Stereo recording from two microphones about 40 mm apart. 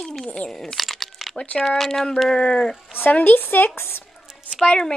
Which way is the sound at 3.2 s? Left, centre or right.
Left.